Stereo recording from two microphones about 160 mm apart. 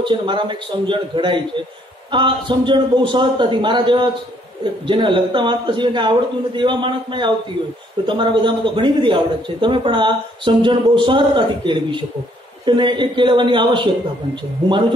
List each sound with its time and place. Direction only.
0.0 s a man's voice: 30° right (ahead or behind)